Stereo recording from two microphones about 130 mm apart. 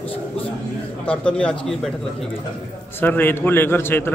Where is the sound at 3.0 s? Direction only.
15° left (ahead or behind).